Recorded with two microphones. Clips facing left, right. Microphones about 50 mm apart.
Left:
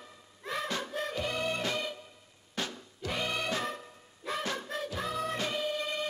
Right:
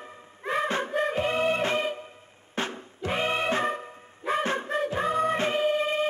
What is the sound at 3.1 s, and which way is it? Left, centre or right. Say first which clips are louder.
Music: right 7 dB; right.